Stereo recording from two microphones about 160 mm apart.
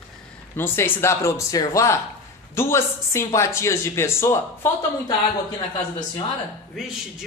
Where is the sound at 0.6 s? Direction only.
15° left (ahead or behind).